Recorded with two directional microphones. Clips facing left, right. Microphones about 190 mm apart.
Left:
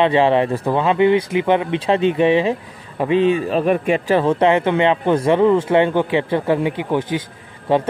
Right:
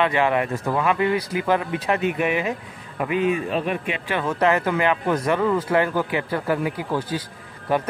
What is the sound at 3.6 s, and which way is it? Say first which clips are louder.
Speech: left 9 dB; 45° left (ahead or behind).